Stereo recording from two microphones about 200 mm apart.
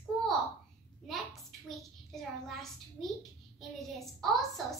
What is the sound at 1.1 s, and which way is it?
A child's voice, centre (ahead or behind).